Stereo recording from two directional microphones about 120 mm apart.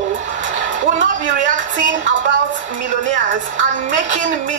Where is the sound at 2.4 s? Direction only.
90° right.